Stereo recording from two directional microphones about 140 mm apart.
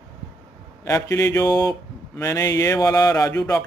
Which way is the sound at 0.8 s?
20° left (ahead or behind).